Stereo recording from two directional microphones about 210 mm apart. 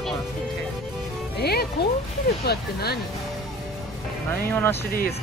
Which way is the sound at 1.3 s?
50° left (ahead or behind).